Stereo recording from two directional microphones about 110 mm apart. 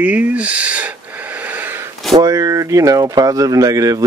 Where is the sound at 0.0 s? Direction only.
15° right (ahead or behind).